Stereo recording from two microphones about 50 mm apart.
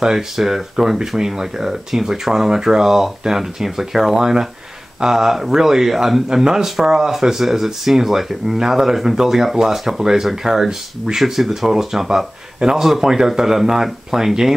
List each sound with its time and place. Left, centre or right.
0.0 s speech: centre